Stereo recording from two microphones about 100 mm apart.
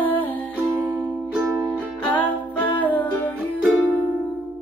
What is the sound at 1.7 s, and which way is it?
Music, 15° left (ahead or behind).